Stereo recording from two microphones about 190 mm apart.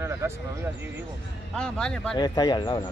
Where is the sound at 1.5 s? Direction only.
5° left (ahead or behind).